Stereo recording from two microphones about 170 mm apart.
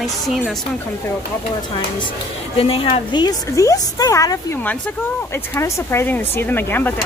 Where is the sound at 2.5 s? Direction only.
35° left (ahead or behind).